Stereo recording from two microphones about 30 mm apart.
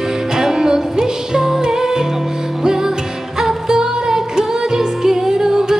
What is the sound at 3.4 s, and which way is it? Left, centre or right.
Music, centre.